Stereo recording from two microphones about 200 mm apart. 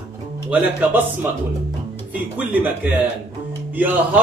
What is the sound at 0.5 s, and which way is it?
Speech, 5° right (ahead or behind).